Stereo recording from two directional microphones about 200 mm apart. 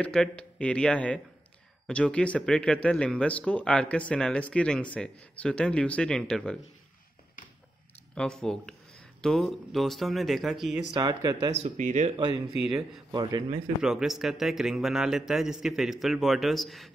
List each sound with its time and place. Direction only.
0.0 s speech: 5° left (ahead or behind)
8.1 s speech: 5° left (ahead or behind)
10.9 s speech: 20° right (ahead or behind)
11.6 s speech: 35° right (ahead or behind)
13.1 s speech: 20° right (ahead or behind)
13.8 s speech: centre (ahead or behind)